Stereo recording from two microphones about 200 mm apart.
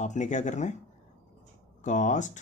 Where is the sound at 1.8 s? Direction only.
40° left (ahead or behind).